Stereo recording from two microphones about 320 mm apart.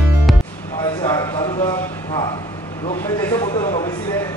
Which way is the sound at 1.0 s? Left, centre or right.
Centre.